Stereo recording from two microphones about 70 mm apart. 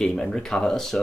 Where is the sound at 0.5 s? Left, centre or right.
Centre.